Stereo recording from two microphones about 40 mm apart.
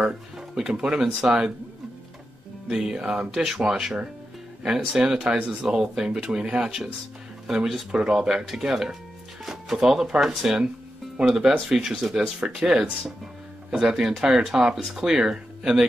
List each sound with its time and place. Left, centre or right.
0.6 s speech: centre
2.7 s speech: centre
7.9 s speech: centre